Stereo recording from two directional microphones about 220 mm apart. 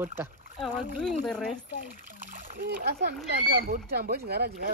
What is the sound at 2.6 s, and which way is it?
Speech, 45° right (ahead or behind).